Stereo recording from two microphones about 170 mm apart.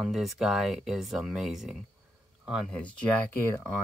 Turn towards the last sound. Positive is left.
turn(degrees=10)  # may be behind; listen again after turning